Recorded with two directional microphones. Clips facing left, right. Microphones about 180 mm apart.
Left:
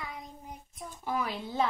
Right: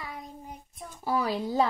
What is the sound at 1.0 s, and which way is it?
Speech, 35° right (ahead or behind).